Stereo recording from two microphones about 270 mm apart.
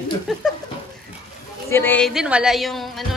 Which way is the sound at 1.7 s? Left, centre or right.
Centre.